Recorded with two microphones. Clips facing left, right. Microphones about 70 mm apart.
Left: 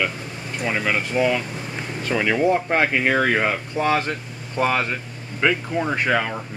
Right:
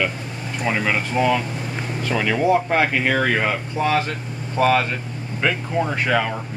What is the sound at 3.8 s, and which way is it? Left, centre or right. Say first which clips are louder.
Speech: even; centre.